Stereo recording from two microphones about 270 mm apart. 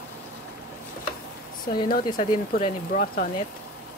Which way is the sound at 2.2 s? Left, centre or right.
Left.